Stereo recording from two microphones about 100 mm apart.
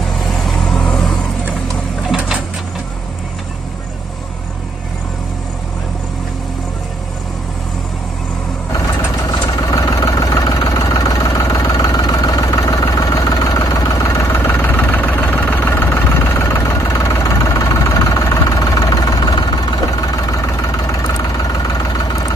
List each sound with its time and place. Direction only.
0.2 s vehicle: centre (ahead or behind)
2.0 s printer: 5° right (ahead or behind)
9.6 s vehicle: 40° left (ahead or behind)